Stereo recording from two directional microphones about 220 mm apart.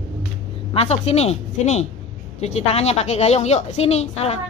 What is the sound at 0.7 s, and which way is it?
A woman's voice, 30° left (ahead or behind).